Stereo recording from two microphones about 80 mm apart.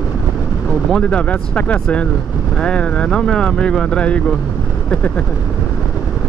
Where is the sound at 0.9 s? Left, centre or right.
Centre.